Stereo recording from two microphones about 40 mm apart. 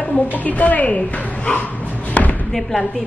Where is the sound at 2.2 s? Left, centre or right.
Left.